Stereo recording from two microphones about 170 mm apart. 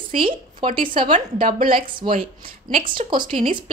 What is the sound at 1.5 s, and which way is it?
Speech, 55° right (ahead or behind).